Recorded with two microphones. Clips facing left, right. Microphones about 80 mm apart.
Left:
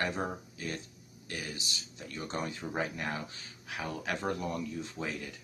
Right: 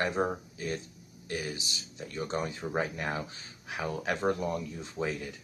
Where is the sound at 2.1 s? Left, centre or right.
Centre.